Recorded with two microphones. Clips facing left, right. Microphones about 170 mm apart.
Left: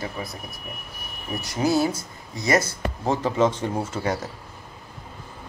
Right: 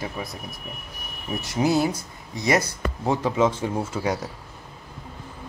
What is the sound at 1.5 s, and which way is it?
Speech, 15° right (ahead or behind).